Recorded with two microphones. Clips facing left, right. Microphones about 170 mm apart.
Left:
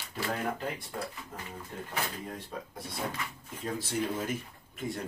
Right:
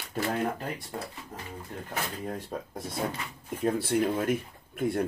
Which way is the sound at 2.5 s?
50° right (ahead or behind).